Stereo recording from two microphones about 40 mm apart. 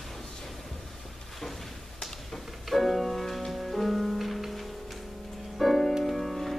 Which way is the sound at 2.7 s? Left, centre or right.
Centre.